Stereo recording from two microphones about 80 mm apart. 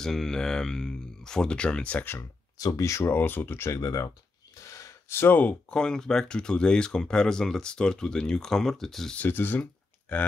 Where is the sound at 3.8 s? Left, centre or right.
Left.